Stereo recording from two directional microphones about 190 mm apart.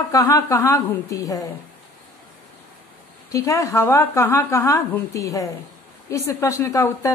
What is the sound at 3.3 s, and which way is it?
Speech, 15° left (ahead or behind).